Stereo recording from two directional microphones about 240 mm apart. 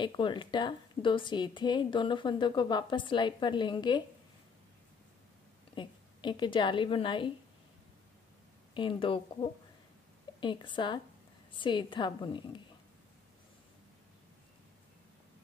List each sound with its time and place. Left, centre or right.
0.0 s a woman's voice: centre
5.8 s a woman's voice: centre
8.7 s a woman's voice: left